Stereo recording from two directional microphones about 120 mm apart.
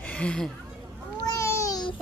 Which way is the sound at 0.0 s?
10° left (ahead or behind).